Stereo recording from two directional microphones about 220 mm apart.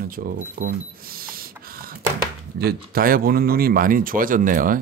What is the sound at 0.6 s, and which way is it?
Cash register, 40° right (ahead or behind).